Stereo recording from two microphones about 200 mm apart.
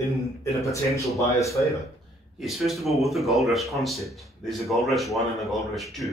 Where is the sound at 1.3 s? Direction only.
15° left (ahead or behind).